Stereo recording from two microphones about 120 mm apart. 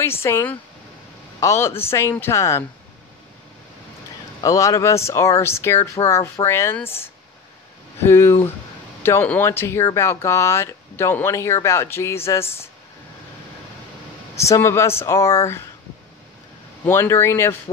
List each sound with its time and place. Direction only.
0.0 s speech: 20° left (ahead or behind)
4.4 s speech: 25° left (ahead or behind)
14.3 s speech: 25° left (ahead or behind)
16.8 s speech: 20° left (ahead or behind)